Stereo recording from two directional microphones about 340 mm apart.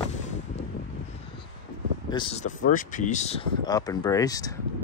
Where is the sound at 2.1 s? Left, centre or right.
Centre.